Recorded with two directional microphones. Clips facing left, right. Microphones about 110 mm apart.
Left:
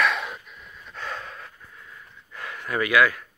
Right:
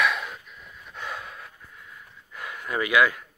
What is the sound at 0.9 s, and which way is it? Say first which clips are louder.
Gasp: left 1 dB; 10° right (ahead or behind).